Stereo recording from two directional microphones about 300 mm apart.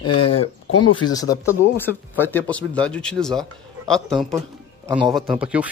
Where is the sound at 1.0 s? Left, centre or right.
Centre.